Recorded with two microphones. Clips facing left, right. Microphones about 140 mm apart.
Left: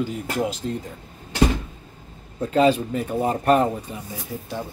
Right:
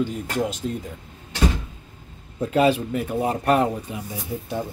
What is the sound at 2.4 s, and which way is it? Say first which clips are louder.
Speech: left 1 dB; 10° right (ahead or behind).